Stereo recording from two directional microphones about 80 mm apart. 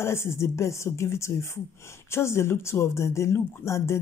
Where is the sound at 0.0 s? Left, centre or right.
Left.